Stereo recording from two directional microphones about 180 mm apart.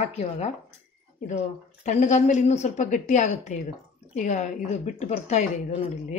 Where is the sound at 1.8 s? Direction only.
40° left (ahead or behind).